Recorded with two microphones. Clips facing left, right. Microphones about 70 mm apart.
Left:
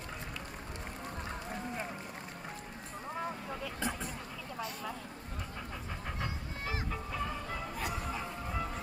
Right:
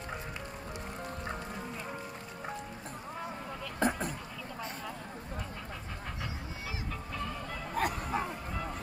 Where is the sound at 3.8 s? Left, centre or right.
Right.